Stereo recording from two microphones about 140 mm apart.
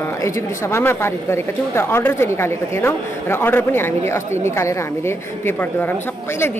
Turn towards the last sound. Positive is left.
turn(degrees=15)  # may be behind; listen again after turning